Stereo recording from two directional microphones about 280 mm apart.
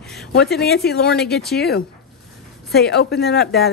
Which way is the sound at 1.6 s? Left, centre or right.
Left.